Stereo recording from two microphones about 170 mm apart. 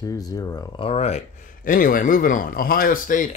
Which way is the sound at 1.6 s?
55° left (ahead or behind).